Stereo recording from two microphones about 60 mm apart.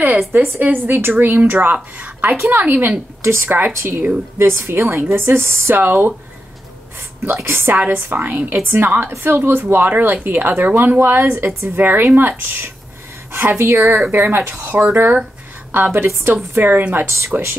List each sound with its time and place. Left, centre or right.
0.0 s speech: right
3.2 s a woman's voice: right
5.8 s speech: right
7.4 s a woman's voice: right
13.7 s a woman's voice: right
14.1 s speech: right